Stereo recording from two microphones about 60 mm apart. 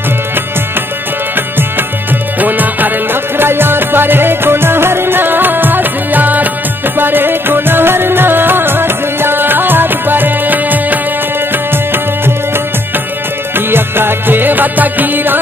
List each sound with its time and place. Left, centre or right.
2.4 s music: right
13.7 s music: right